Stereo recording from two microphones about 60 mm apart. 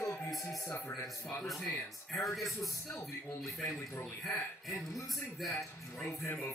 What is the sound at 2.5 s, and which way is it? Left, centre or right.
Speech, left.